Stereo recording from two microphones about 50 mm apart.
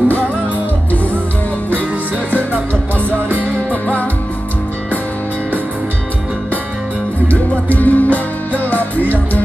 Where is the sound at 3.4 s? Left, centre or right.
Left.